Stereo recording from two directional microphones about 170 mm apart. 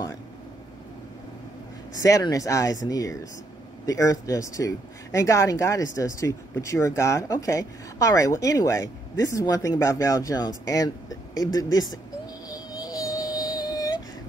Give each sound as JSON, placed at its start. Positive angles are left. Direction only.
{"t": 2.0, "sound": "speech", "side_deg": 20}
{"t": 12.4, "sound": "music", "side_deg": 20}